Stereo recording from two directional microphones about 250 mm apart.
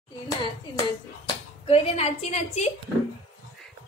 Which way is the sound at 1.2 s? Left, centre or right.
Left.